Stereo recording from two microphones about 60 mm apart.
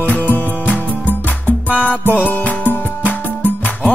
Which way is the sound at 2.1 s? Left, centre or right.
Left.